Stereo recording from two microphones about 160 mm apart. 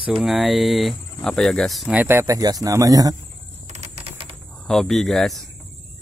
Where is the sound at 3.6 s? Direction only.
45° right (ahead or behind).